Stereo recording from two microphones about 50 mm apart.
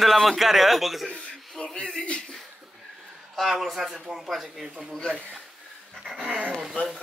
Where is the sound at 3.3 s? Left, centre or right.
Centre.